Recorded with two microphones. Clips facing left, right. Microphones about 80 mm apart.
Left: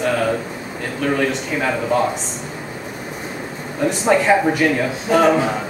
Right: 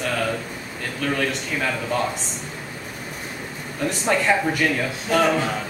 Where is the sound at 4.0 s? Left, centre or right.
Centre.